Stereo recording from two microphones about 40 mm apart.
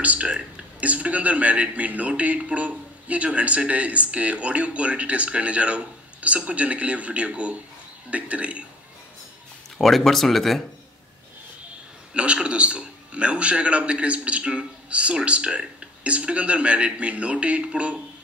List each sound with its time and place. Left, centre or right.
0.0 s speech: right
9.8 s speech: centre
12.1 s speech: right